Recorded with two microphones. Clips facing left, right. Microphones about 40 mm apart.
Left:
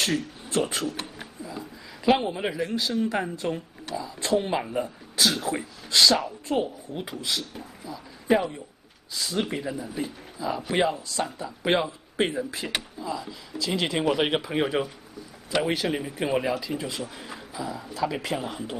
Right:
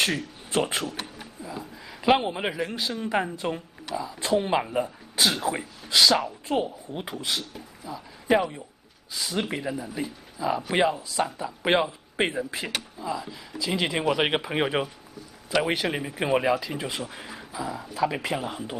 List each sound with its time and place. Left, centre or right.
0.0 s speech: right
1.4 s a sound: centre
2.3 s speech: right
5.1 s speech: right
5.6 s speech: centre; by 7.4 s right
7.8 s speech: centre